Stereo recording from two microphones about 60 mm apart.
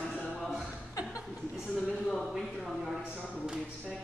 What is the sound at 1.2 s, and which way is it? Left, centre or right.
Chuckle, centre.